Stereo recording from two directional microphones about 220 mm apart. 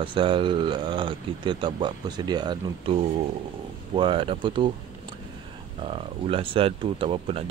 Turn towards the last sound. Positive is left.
turn(degrees=-25)  # may be behind; listen again after turning